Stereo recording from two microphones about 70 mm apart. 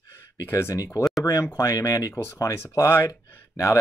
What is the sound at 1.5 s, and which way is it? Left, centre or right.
Speech, left.